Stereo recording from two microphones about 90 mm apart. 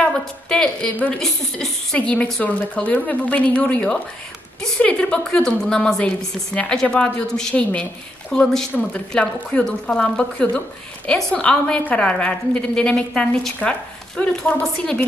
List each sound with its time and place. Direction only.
0.0 s a woman's voice: 10° left (ahead or behind)
1.2 s a woman's voice: 5° left (ahead or behind)